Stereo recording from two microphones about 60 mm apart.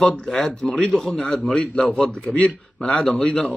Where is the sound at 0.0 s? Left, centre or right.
Centre.